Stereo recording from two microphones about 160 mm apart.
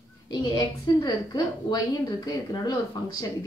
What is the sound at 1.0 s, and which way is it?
A woman's voice, 25° left (ahead or behind).